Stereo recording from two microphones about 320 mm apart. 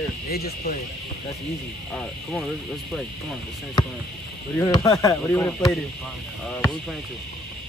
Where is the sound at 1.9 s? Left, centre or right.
Centre.